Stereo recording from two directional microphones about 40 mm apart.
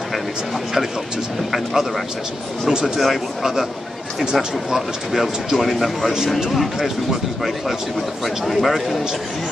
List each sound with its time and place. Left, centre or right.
1.5 s speech: centre
3.0 s speech: centre
4.2 s speech: centre